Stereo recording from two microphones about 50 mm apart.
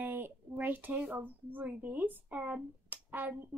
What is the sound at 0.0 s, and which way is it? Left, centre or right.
Speech, right.